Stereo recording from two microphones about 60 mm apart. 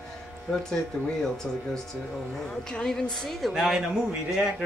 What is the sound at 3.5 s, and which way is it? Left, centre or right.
Speech, centre.